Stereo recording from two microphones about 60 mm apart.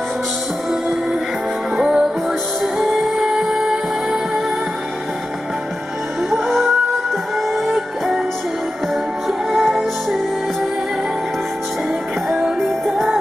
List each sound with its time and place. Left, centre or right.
1.8 s music: centre
6.3 s music: centre
9.5 s music: centre
12.4 s music: centre